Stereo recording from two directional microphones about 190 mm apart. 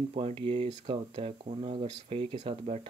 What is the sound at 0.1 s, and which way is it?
Speech, 30° right (ahead or behind).